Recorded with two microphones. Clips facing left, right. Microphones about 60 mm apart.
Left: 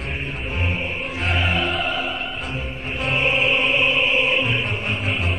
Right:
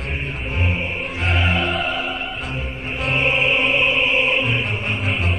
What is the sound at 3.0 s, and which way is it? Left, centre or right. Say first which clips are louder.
Music: right 1 dB; centre.